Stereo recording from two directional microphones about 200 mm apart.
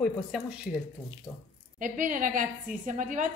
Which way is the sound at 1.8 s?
40° right (ahead or behind).